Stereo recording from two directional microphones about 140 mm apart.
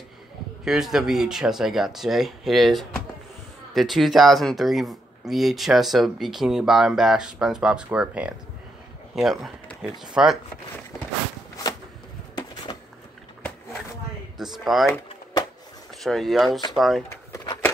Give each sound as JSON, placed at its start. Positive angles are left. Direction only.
{"t": 0.7, "sound": "a man's voice", "side_deg": 0}
{"t": 12.7, "sound": "a sound", "side_deg": 30}
{"t": 14.4, "sound": "speech", "side_deg": 0}
{"t": 16.0, "sound": "speech", "side_deg": 0}